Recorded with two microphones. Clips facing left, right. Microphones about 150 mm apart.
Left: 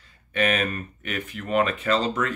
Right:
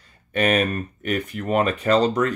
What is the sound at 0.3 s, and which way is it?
Speech, 40° right (ahead or behind).